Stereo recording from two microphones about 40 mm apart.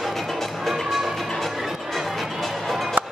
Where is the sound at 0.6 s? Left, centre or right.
Centre.